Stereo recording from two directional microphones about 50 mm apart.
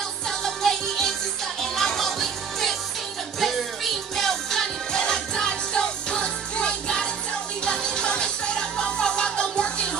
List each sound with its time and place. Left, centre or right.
0.3 s music: centre